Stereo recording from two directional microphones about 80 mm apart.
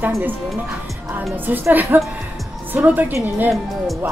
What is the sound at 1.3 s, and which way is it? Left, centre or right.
A woman's voice, right.